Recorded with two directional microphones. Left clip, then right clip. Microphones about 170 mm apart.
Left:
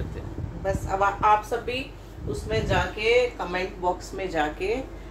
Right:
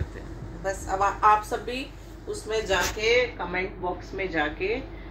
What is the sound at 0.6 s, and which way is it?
Speech, 30° right (ahead or behind).